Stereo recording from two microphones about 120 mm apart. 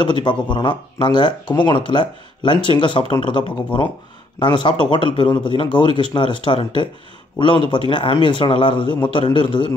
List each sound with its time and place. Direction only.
0.0 s speech: 40° left (ahead or behind)